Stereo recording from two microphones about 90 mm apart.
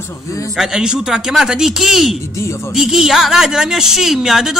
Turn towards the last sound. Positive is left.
turn(degrees=-5)  # may be behind; listen again after turning